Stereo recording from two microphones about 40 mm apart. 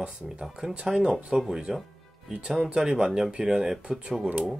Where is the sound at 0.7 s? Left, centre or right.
Right.